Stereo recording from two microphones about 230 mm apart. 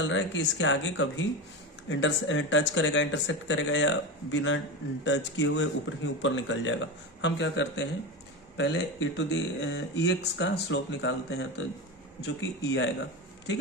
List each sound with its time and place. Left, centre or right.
0.0 s speech: left